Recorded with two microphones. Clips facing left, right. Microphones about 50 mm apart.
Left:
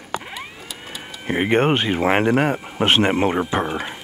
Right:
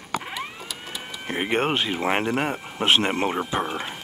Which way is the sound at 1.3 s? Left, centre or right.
Centre.